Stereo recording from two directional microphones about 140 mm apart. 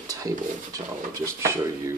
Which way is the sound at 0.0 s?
25° right (ahead or behind).